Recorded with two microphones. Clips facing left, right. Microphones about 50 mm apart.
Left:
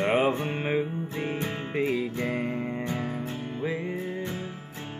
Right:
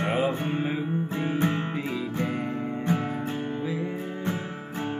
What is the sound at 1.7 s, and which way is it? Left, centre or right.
Music, left.